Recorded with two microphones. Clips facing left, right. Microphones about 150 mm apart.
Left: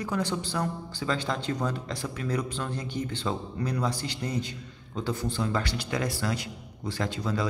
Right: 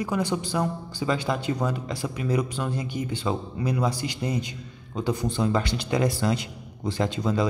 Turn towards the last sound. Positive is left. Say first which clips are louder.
# right 5 dB
turn(degrees=-20)  # may be behind; listen again after turning